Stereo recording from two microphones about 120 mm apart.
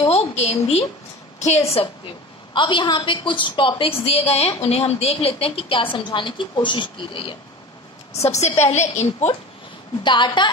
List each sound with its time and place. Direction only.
0.1 s a woman's voice: 60° left (ahead or behind)
2.5 s a woman's voice: 40° left (ahead or behind)
8.1 s a woman's voice: 65° left (ahead or behind)
10.0 s a woman's voice: 40° left (ahead or behind)